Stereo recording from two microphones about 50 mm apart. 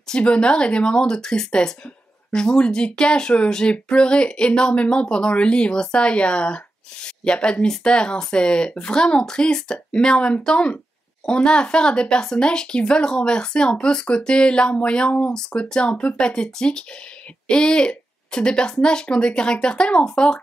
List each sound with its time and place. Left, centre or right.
0.1 s speech: left